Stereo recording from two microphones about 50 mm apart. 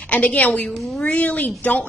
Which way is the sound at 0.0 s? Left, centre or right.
Left.